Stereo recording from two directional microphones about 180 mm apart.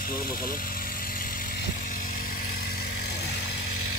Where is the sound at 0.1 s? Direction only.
55° left (ahead or behind).